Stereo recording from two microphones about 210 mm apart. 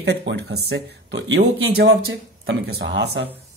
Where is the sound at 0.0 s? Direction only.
55° right (ahead or behind).